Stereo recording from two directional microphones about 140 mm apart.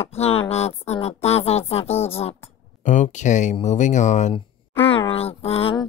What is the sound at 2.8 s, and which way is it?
Speech, 60° left (ahead or behind).